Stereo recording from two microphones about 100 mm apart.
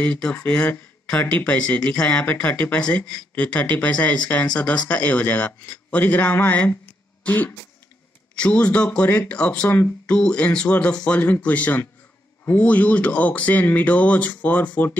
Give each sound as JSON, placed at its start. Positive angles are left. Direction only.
{"t": 0.0, "sound": "speech", "side_deg": 15}